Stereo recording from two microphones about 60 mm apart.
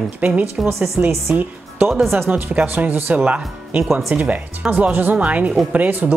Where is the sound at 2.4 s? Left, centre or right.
Right.